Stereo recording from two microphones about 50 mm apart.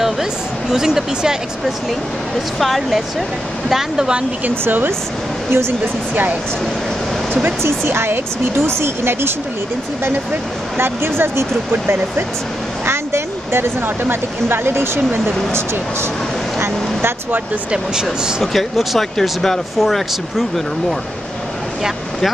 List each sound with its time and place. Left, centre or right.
0.0 s speech: centre
2.6 s speech: centre
4.5 s speech: right
5.5 s speech: right
7.6 s speech: right
10.8 s speech: right
16.5 s speech: right
18.4 s speech: centre